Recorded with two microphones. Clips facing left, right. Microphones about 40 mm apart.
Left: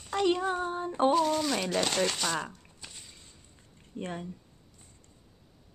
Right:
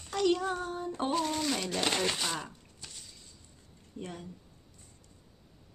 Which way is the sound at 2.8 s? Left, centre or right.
Left.